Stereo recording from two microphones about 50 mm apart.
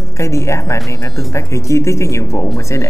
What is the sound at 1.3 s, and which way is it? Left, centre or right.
Speech, left.